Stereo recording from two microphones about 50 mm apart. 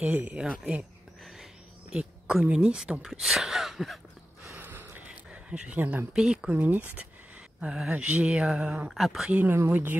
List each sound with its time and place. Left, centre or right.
0.0 s speech: right
1.9 s a sound: centre
2.5 s speech: right
3.0 s speech: centre
4.6 s gasp: right
5.3 s a sound: right
5.8 s speech: right
6.1 s speech: centre
6.5 s speech: right
7.6 s speech: centre
7.9 s speech: right
8.8 s speech: centre
9.7 s speech: right